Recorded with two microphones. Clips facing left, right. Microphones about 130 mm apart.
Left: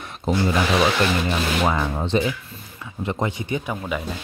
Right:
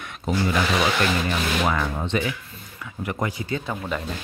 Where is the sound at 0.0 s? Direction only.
30° left (ahead or behind).